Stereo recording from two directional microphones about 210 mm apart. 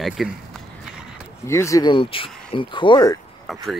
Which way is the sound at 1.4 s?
15° left (ahead or behind).